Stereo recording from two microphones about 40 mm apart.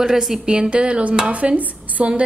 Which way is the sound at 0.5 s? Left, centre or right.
Right.